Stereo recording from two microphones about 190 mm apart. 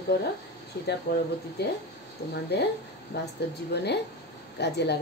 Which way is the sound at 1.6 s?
60° left (ahead or behind).